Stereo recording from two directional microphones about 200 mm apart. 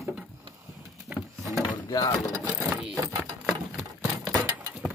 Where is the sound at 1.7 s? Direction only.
20° left (ahead or behind).